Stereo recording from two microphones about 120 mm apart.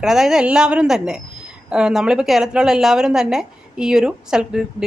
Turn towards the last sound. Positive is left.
turn(degrees=-5)  # may be behind; listen again after turning